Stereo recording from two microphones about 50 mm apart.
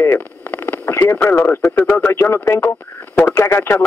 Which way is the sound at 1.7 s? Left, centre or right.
Left.